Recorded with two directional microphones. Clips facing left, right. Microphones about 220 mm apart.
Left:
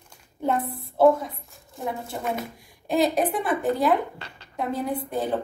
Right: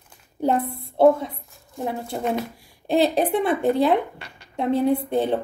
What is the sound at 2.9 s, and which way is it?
A woman's voice, 30° right (ahead or behind).